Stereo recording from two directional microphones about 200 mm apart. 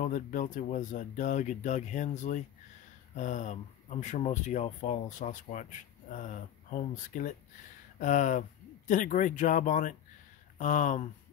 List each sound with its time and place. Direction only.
0.0 s speech: 45° left (ahead or behind)